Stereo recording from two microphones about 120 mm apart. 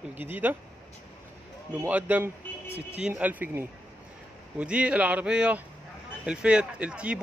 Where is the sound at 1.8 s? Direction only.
15° right (ahead or behind).